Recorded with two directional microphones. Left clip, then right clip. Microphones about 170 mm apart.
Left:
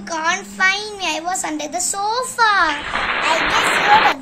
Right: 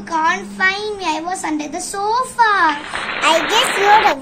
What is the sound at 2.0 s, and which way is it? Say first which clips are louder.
Child singing: right 3 dB; 65° left (ahead or behind).